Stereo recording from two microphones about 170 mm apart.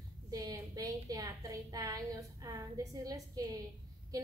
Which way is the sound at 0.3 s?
20° right (ahead or behind).